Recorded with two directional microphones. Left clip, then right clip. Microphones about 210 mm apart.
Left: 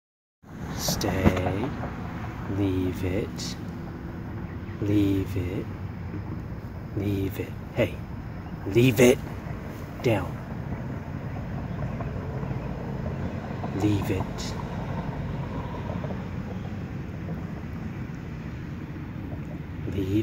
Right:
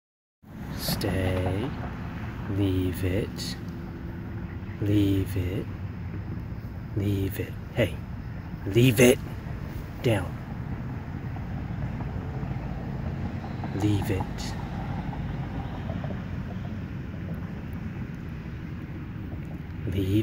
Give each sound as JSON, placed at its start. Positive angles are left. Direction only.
{"t": 0.7, "sound": "speech", "side_deg": -5}
{"t": 4.8, "sound": "speech", "side_deg": -10}
{"t": 7.0, "sound": "speech", "side_deg": -10}
{"t": 13.7, "sound": "speech", "side_deg": -5}
{"t": 19.9, "sound": "speech", "side_deg": -20}